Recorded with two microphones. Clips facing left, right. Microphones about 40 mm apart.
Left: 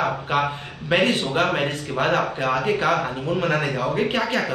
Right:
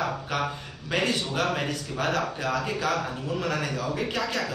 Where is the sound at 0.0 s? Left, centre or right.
Left.